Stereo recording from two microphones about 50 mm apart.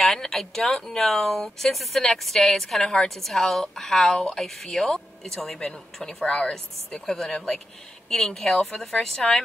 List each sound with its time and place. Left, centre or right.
0.0 s speech: centre
6.2 s speech: left
6.5 s speech: centre